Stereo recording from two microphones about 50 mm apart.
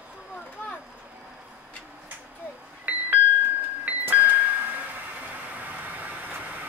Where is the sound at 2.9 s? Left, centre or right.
Right.